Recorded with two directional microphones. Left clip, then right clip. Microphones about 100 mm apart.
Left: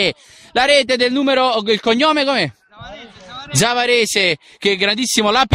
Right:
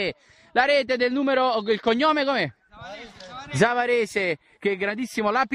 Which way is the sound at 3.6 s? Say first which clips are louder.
Left 6 dB; 20° left (ahead or behind).